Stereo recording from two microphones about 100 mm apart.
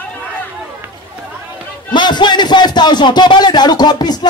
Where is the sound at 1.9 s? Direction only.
50° left (ahead or behind).